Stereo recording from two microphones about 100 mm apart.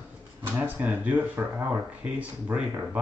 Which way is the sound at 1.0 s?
15° right (ahead or behind).